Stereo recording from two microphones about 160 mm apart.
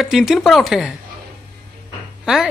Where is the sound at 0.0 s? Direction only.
Centre (ahead or behind).